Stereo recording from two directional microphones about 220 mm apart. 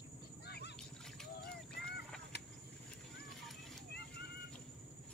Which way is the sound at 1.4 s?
45° left (ahead or behind).